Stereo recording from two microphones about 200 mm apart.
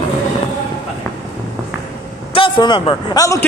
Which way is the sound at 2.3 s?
25° left (ahead or behind).